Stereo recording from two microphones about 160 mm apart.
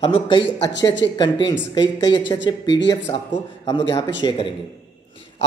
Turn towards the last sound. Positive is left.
turn(degrees=30)  # may be behind; listen again after turning